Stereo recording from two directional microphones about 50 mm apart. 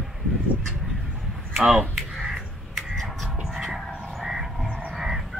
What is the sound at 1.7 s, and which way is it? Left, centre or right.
Crow, centre.